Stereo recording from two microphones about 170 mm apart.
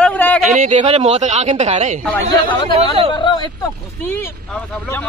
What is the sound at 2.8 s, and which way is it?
Speech, 35° right (ahead or behind).